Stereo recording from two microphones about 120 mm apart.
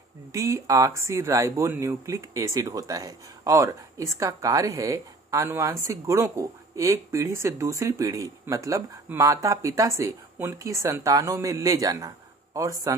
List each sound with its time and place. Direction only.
0.3 s speech: 25° right (ahead or behind)